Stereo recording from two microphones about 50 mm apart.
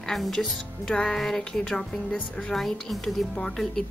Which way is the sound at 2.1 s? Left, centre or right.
Left.